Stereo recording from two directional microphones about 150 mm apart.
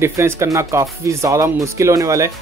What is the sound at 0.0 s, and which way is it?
Speech, 15° right (ahead or behind).